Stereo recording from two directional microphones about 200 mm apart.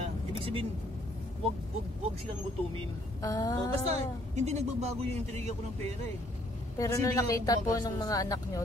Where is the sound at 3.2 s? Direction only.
15° left (ahead or behind).